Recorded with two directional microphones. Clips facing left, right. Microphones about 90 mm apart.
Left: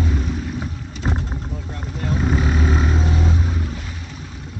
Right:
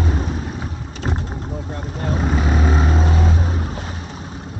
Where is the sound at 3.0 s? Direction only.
50° right (ahead or behind).